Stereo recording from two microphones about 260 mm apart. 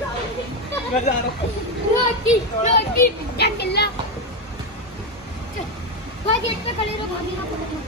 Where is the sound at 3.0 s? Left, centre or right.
Left.